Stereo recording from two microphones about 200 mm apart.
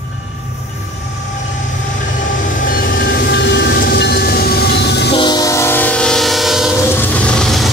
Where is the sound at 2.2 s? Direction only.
45° left (ahead or behind).